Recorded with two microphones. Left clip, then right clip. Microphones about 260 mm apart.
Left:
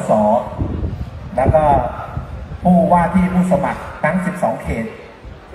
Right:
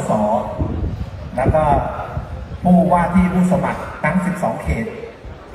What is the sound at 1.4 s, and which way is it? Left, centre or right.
Speech, left.